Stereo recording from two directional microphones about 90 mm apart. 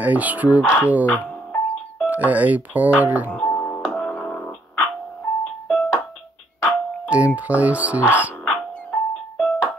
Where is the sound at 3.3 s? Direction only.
15° left (ahead or behind).